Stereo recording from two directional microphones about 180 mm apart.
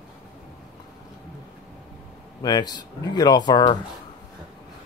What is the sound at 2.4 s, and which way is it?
Speech, 20° left (ahead or behind).